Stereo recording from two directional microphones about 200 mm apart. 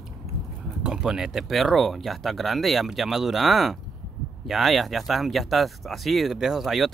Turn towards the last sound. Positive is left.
turn(degrees=0)  # may be behind; listen again after turning